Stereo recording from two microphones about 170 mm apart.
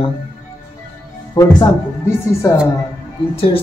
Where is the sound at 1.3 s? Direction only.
20° left (ahead or behind).